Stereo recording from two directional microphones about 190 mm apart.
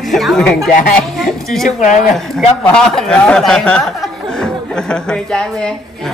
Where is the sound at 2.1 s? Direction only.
5° left (ahead or behind).